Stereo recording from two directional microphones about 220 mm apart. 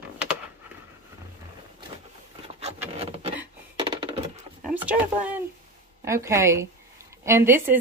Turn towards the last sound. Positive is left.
turn(degrees=-10)  # may be behind; listen again after turning